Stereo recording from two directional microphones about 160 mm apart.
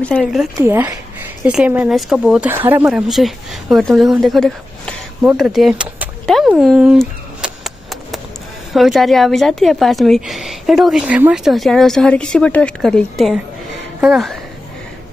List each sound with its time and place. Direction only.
0.0 s speech: centre (ahead or behind)
0.6 s speech: 15° right (ahead or behind); by 6.5 s centre (ahead or behind)
6.5 s a sound: 5° right (ahead or behind)
8.7 s speech: centre (ahead or behind)